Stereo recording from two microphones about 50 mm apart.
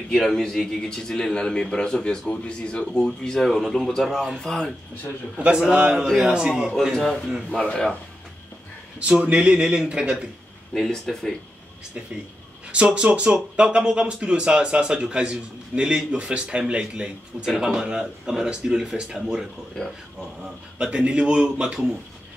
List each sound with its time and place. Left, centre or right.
0.1 s a man's voice: centre
5.4 s speech: centre
7.5 s a man's voice: centre
9.0 s speech: right
10.7 s a man's voice: centre
12.7 s speech: right
19.7 s a man's voice: centre
20.7 s speech: right